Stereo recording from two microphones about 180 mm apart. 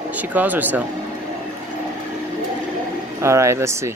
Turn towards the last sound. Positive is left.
turn(degrees=-15)  # may be behind; listen again after turning